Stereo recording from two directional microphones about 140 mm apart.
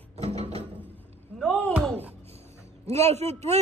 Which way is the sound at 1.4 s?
10° left (ahead or behind).